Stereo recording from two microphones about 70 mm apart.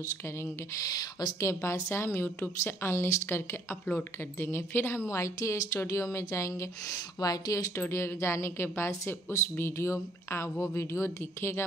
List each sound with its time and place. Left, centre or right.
0.8 s speech: left
1.4 s a woman's voice: left
7.7 s a woman's voice: left